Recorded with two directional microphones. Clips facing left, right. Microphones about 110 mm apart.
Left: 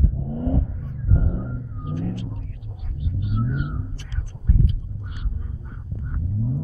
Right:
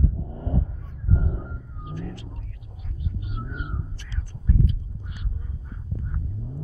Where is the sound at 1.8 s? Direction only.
40° left (ahead or behind).